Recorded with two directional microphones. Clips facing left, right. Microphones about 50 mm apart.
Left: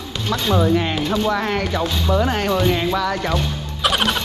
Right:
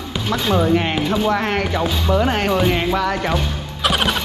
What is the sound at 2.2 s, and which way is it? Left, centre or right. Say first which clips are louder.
Speech: right 1 dB; right.